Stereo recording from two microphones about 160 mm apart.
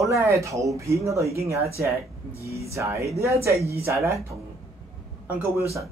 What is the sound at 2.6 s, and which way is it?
A man's voice, 20° right (ahead or behind).